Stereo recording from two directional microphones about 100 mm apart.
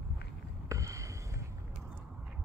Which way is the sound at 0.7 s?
30° right (ahead or behind).